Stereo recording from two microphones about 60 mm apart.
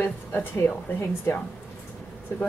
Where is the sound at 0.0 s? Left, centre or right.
Left.